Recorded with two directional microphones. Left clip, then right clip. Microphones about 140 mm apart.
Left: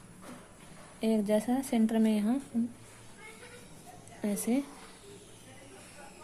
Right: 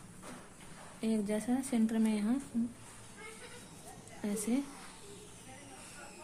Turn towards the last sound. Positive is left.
turn(degrees=45)  # may be behind; listen again after turning